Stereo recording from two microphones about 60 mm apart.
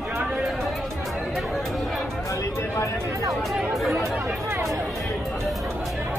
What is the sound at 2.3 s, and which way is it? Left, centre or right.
Music, left.